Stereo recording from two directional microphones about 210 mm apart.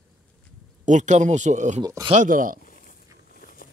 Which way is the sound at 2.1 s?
40° right (ahead or behind).